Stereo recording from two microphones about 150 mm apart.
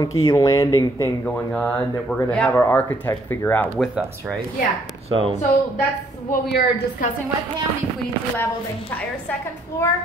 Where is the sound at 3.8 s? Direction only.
5° right (ahead or behind).